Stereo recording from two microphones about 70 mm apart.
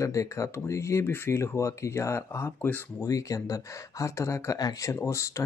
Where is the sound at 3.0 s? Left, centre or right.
Left.